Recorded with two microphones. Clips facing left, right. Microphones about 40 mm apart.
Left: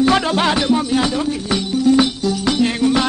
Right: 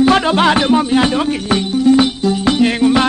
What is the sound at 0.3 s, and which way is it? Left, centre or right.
Music, right.